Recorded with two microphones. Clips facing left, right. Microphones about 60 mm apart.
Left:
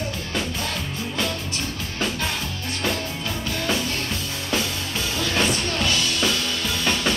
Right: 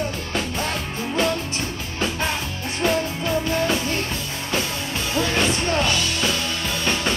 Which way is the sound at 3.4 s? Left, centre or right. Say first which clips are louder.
Right 2 dB; right.